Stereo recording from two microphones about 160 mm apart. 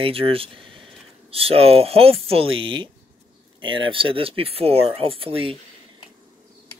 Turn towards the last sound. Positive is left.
turn(degrees=-35)  # may be behind; listen again after turning